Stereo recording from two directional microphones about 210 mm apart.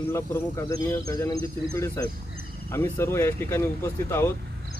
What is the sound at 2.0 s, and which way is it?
Speech, 15° left (ahead or behind).